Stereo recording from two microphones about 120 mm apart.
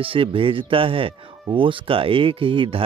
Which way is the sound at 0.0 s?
50° right (ahead or behind).